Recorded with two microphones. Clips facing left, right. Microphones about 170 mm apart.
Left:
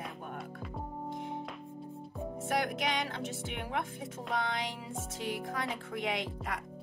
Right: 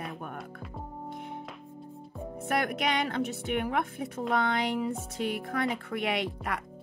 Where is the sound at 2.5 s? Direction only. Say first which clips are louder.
Right 4 dB; 65° right (ahead or behind).